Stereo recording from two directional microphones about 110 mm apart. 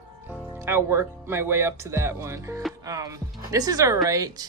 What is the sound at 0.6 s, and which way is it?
A woman's voice, 25° right (ahead or behind).